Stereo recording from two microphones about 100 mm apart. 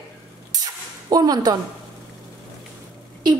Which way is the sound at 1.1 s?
40° right (ahead or behind).